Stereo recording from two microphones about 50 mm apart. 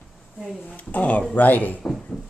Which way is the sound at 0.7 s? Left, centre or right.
Left.